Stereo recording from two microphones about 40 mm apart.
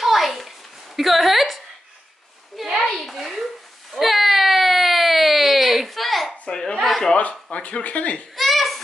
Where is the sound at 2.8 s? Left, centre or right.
Centre.